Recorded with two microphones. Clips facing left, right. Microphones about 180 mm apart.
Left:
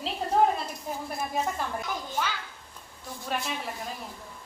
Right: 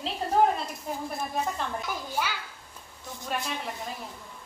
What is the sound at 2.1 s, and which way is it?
Speech, 10° right (ahead or behind).